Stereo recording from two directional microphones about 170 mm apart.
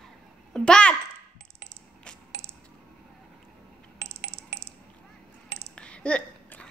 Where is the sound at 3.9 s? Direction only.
90° right.